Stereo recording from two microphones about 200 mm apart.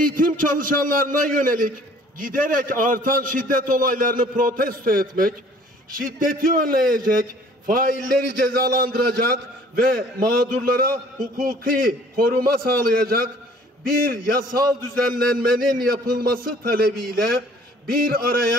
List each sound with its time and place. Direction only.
0.0 s a man's voice: 45° right (ahead or behind)